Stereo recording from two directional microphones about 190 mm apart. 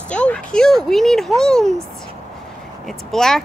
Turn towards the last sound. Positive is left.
turn(degrees=0)  # may be behind; listen again after turning